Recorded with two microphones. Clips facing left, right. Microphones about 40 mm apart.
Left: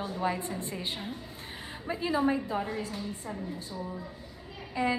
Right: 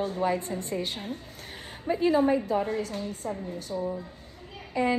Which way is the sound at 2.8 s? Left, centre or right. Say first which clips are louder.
Right 4 dB; right.